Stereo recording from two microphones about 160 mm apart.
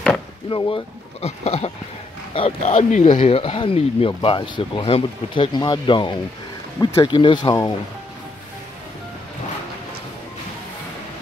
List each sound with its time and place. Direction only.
0.5 s speech: 30° left (ahead or behind)
2.9 s speech: 50° left (ahead or behind)
3.3 s speech: 35° left (ahead or behind)